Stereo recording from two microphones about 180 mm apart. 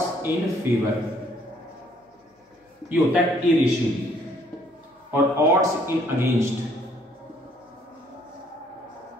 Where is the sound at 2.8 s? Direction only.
10° right (ahead or behind).